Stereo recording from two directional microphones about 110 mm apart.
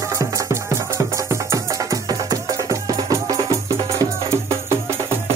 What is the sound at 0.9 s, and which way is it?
Music, 25° right (ahead or behind).